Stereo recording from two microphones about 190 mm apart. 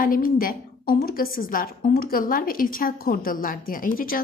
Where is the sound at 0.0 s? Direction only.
45° left (ahead or behind).